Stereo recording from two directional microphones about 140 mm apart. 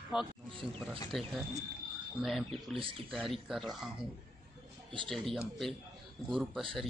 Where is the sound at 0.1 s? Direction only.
35° left (ahead or behind).